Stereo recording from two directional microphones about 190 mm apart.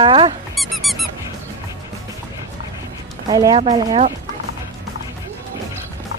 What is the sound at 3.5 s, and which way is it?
Speech, 30° right (ahead or behind).